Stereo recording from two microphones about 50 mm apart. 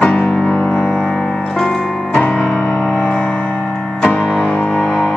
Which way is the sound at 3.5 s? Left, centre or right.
Centre.